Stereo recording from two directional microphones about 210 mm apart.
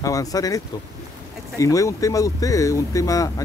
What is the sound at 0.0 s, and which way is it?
Speech, 15° left (ahead or behind).